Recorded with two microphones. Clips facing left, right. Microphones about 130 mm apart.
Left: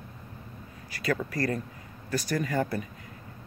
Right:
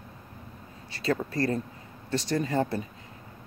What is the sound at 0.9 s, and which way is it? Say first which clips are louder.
Speech: right 1 dB; 25° right (ahead or behind).